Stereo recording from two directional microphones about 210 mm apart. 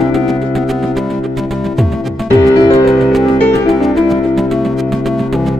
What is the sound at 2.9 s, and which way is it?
Music, centre (ahead or behind).